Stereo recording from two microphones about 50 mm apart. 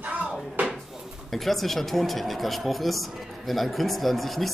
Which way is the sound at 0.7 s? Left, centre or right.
Centre.